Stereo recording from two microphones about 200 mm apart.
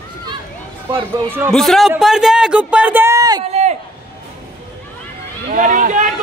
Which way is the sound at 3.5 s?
35° right (ahead or behind).